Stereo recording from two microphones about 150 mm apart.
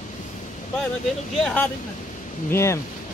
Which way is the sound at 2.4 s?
20° left (ahead or behind).